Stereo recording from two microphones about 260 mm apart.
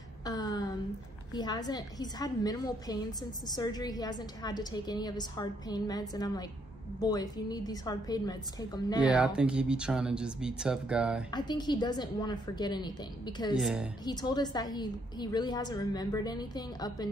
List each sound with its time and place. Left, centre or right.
0.2 s a sound: centre
1.3 s a woman's voice: centre
9.1 s speech: centre
11.3 s a woman's voice: centre
13.6 s speech: centre
14.0 s a woman's voice: centre